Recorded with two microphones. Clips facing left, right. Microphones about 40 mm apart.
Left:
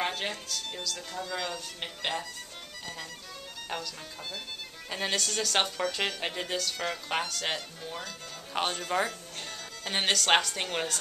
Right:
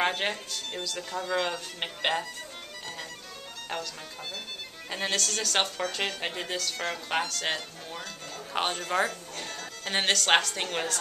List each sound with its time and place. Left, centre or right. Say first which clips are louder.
0.0 s speech: right 4 dB; right
3.7 s speech: right 2 dB; centre